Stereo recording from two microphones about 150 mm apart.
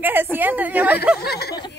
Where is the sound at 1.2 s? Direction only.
90° left.